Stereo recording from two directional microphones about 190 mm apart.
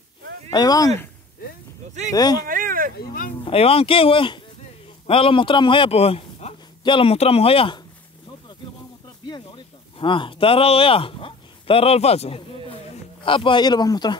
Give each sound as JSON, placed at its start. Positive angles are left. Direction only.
{"t": 0.5, "sound": "speech", "side_deg": 20}
{"t": 2.1, "sound": "speech", "side_deg": 20}
{"t": 2.4, "sound": "speech", "side_deg": -45}
{"t": 3.0, "sound": "speech", "side_deg": 50}
{"t": 3.4, "sound": "a man's voice", "side_deg": 30}
{"t": 9.9, "sound": "speech", "side_deg": 25}